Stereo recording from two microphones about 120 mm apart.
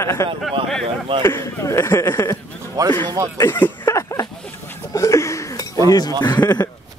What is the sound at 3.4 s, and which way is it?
Speech, 35° left (ahead or behind).